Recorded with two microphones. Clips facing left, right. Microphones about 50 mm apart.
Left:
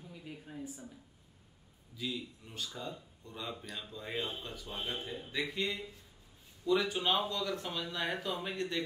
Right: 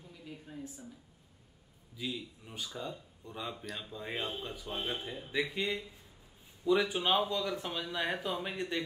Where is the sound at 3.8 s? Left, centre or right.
Centre.